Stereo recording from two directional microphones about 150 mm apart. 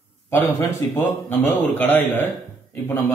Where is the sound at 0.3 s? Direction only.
15° left (ahead or behind).